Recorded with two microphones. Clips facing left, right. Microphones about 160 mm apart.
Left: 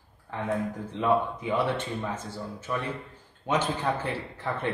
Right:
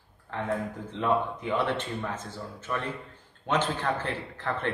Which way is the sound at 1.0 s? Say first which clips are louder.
Left 2 dB; 10° left (ahead or behind).